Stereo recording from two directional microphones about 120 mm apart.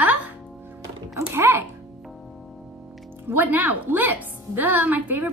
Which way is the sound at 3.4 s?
15° right (ahead or behind).